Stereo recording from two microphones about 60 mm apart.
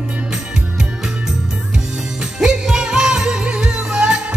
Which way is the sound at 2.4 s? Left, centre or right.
Centre.